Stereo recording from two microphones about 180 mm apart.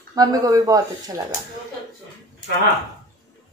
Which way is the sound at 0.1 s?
20° right (ahead or behind).